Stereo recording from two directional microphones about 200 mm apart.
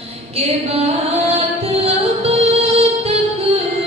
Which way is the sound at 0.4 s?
30° right (ahead or behind).